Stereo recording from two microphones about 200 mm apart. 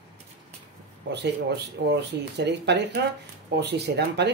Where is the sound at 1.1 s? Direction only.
55° right (ahead or behind).